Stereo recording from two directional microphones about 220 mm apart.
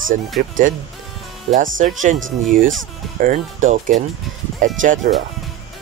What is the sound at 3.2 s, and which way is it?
Speech, 35° right (ahead or behind).